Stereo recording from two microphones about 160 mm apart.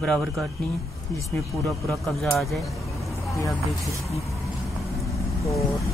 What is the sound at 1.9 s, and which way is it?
Speech, centre (ahead or behind).